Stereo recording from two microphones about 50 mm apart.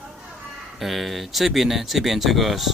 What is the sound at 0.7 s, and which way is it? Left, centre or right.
Speech, centre.